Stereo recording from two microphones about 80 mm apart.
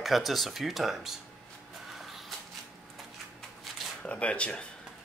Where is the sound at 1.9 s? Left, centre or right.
Centre.